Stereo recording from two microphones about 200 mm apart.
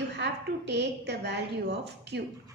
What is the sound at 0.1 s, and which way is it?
A woman's voice, 60° right (ahead or behind).